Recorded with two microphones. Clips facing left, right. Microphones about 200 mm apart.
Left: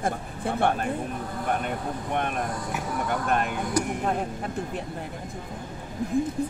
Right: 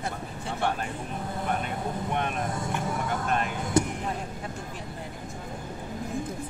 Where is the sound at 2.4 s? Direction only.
25° right (ahead or behind).